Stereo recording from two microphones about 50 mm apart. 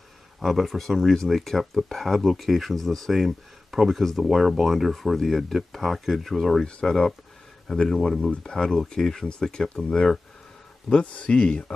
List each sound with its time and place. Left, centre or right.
0.4 s speech: centre
6.6 s speech: centre